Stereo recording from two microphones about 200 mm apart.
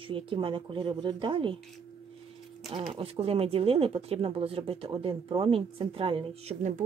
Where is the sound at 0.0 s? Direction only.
25° right (ahead or behind).